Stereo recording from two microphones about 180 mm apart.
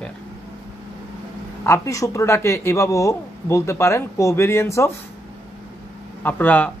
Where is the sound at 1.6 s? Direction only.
15° left (ahead or behind).